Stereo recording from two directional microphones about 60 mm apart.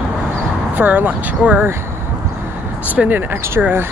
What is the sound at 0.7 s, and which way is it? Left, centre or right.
Speech, right.